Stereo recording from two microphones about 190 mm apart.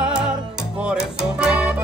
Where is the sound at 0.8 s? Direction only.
5° right (ahead or behind).